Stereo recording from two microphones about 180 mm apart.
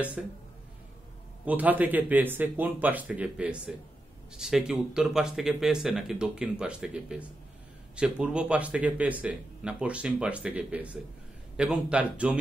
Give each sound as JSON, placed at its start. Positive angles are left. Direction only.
{"t": 0.2, "sound": "speech", "side_deg": -5}
{"t": 1.4, "sound": "speech", "side_deg": -10}